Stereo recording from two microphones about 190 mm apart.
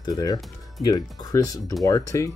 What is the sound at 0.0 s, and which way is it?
Speech, 20° left (ahead or behind).